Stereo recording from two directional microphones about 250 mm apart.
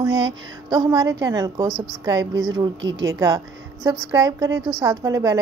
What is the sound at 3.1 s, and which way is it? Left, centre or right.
A woman's voice, centre.